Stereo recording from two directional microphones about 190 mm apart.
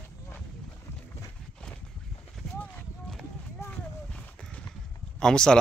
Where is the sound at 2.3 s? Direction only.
5° left (ahead or behind).